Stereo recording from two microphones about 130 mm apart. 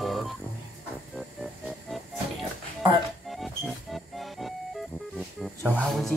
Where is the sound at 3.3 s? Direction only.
Centre (ahead or behind).